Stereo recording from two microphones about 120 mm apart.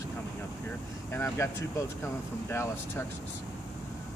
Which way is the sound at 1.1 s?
25° left (ahead or behind).